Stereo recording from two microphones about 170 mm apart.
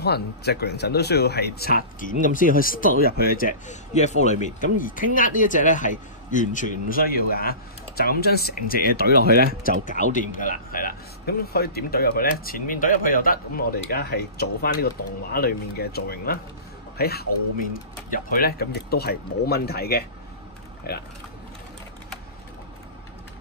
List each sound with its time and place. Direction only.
0.0 s speech: 70° left (ahead or behind)
2.0 s speech: 50° left (ahead or behind)
9.1 s speech: 65° right (ahead or behind)
9.5 s speech: 55° left (ahead or behind)